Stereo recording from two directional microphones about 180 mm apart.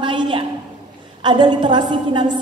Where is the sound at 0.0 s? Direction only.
25° right (ahead or behind).